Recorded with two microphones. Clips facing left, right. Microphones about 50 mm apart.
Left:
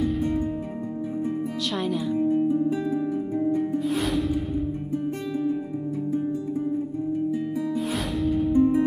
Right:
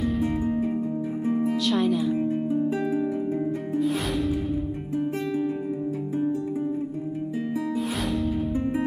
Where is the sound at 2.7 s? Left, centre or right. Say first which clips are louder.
Even; right.